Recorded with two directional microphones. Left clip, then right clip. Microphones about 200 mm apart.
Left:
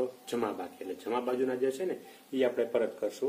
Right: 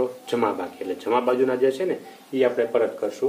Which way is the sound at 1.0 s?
30° left (ahead or behind).